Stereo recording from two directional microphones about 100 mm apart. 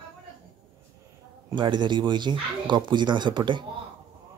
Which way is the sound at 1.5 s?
50° right (ahead or behind).